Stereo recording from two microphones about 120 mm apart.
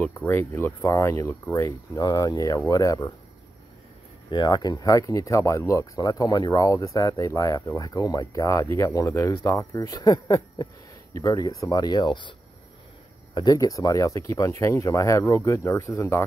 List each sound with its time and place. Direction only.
0.1 s speech: 15° left (ahead or behind)
4.3 s speech: 40° left (ahead or behind); by 16.3 s 15° left (ahead or behind)